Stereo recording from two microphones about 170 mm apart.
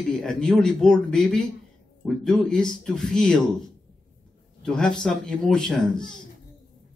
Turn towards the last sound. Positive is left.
turn(degrees=5)  # may be behind; listen again after turning